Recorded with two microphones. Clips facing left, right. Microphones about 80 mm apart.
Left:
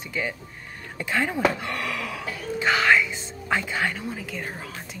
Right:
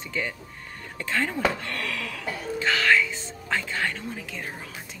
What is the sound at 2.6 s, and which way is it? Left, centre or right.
Whispering, centre.